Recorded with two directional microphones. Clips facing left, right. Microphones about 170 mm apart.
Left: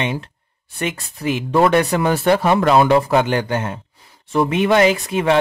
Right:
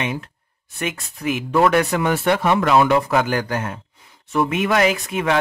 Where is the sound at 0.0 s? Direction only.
30° left (ahead or behind).